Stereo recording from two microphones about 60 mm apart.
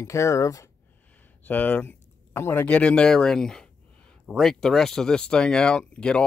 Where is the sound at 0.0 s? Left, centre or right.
Left.